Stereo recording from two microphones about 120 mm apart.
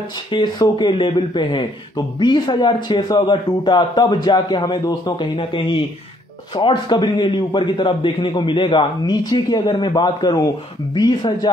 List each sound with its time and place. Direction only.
0.3 s speech: 35° left (ahead or behind)